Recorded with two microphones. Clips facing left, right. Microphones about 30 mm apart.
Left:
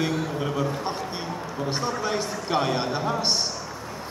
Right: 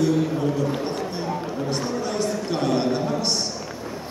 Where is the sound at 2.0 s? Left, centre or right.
Centre.